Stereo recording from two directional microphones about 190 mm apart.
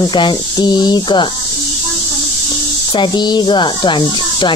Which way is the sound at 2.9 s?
25° left (ahead or behind).